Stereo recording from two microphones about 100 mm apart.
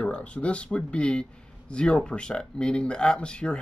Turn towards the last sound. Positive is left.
turn(degrees=10)  # may be behind; listen again after turning